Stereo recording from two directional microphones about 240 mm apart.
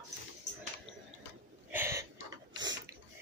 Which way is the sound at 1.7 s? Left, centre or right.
Centre.